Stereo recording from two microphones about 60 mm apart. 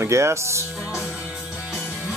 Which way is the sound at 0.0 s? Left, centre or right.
Right.